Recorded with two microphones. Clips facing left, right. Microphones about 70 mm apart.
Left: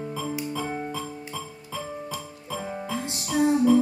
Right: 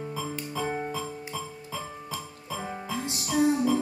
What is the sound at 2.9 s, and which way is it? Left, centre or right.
Music, left.